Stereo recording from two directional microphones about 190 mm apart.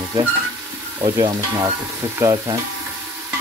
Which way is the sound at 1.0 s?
25° right (ahead or behind).